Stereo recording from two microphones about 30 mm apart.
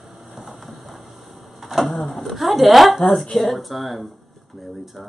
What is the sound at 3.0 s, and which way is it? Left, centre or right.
Speech, centre.